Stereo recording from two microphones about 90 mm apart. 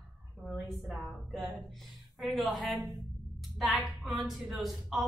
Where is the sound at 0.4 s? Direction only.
Centre (ahead or behind).